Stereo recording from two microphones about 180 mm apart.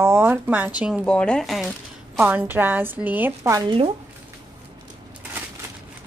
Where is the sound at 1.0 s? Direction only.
5° left (ahead or behind); by 3.6 s 15° right (ahead or behind).